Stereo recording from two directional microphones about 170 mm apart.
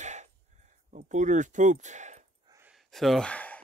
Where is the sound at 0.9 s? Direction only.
45° right (ahead or behind).